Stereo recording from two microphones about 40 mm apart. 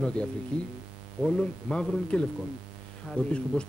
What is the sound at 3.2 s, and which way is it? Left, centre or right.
Speech, left.